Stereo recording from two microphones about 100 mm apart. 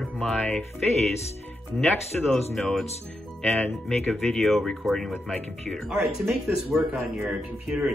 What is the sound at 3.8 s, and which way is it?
Speech, 5° left (ahead or behind).